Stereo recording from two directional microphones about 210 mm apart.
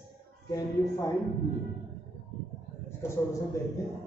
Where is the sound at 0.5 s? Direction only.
15° left (ahead or behind).